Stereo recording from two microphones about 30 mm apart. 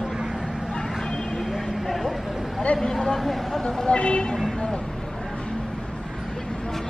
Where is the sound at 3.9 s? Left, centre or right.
Left.